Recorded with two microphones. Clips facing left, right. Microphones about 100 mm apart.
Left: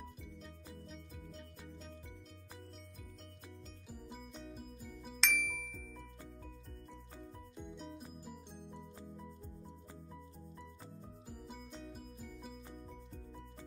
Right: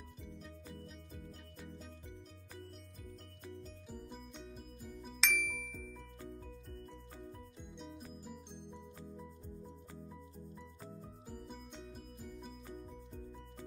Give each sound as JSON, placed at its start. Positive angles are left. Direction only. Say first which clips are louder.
{"t": 3.9, "sound": "music", "louder": "even", "side_deg": 5}
{"t": 7.5, "sound": "music", "louder": "left 2 dB", "side_deg": 0}
{"t": 11.7, "sound": "music", "louder": "left 1 dB", "side_deg": 0}